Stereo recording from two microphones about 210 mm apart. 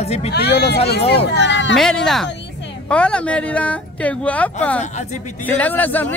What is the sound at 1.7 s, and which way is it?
Speech, centre (ahead or behind).